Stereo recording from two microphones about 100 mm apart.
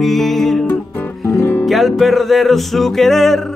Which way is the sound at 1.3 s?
25° left (ahead or behind).